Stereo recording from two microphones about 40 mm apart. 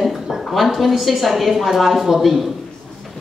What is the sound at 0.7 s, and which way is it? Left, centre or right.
A woman's voice, centre.